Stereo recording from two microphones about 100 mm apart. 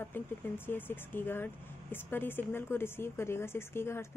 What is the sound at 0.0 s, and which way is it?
A woman's voice, 20° left (ahead or behind).